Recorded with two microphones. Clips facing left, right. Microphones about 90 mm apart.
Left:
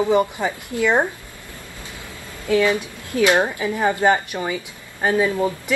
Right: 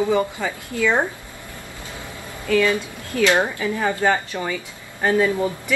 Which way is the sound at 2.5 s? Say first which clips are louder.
Left 1 dB; 20° left (ahead or behind).